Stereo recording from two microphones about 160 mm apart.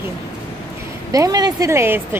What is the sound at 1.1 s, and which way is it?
Speech, 20° right (ahead or behind).